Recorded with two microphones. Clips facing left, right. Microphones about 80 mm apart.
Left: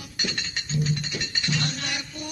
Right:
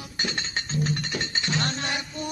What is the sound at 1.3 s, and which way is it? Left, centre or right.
Music, right.